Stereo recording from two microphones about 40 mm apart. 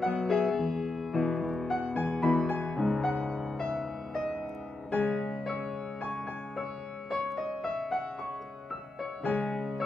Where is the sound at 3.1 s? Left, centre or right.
Left.